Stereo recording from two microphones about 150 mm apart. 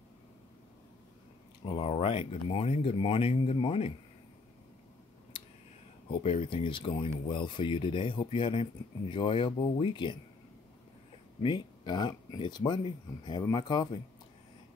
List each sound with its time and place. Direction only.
1.6 s speech: 40° left (ahead or behind)
5.3 s a sound: 35° left (ahead or behind)
6.0 s speech: 40° left (ahead or behind)
11.4 s speech: 30° left (ahead or behind)